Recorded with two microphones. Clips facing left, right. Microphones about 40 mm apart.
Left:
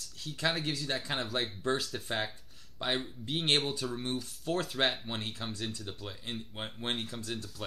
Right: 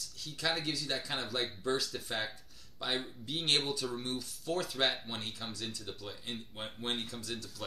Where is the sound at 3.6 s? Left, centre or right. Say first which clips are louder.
Left 2 dB; centre.